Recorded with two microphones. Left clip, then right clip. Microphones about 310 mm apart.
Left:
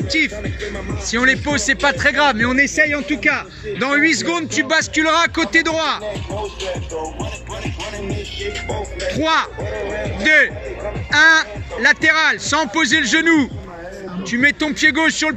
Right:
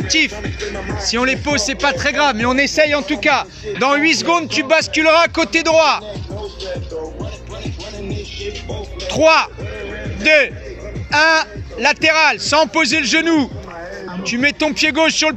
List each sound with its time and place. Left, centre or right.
0.4 s speech: right
1.1 s a man's voice: centre
2.5 s a man's voice: centre
6.7 s music: left
7.6 s music: left
9.1 s a man's voice: centre
9.8 s music: centre
10.2 s a man's voice: centre